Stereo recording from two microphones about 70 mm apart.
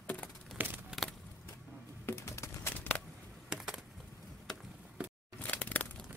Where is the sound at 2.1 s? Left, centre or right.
Left.